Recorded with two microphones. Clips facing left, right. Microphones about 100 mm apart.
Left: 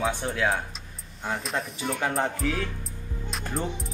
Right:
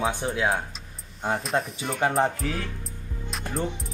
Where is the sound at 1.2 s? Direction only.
40° right (ahead or behind).